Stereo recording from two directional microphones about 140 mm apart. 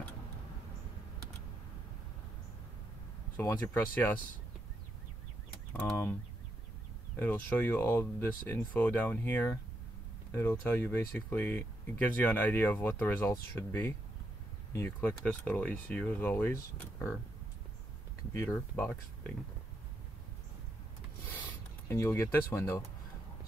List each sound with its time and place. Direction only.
3.3 s speech: 15° left (ahead or behind)
7.2 s speech: 10° left (ahead or behind)
18.3 s speech: 20° left (ahead or behind)
21.8 s speech: 20° left (ahead or behind)